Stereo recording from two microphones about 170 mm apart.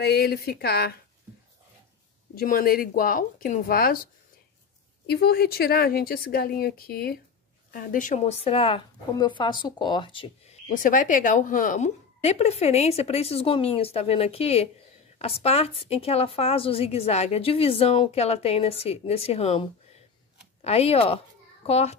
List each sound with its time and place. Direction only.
0.0 s speech: 70° left (ahead or behind)
2.3 s a woman's voice: 60° left (ahead or behind)
7.7 s a woman's voice: 50° left (ahead or behind); by 10.2 s 30° left (ahead or behind)
10.7 s a woman's voice: 50° left (ahead or behind)